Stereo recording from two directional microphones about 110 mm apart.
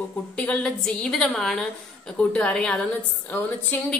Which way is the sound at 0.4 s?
10° left (ahead or behind).